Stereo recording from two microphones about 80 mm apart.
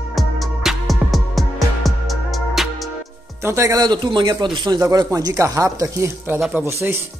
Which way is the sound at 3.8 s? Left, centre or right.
Right.